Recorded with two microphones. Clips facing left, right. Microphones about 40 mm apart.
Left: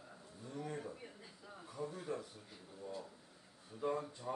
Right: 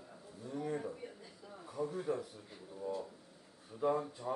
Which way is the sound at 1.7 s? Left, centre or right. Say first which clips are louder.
Right 6 dB; centre.